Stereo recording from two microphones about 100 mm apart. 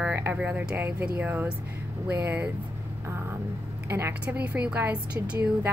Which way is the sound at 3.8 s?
25° right (ahead or behind).